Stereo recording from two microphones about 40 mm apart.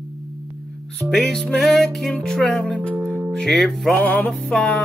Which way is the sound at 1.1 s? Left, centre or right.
Centre.